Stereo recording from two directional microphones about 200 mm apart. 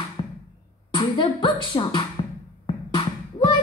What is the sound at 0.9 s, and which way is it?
Music, 20° left (ahead or behind).